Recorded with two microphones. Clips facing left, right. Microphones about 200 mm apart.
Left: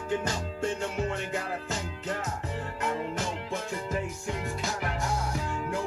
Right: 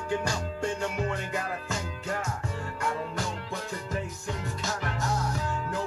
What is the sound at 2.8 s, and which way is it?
Music, 20° left (ahead or behind).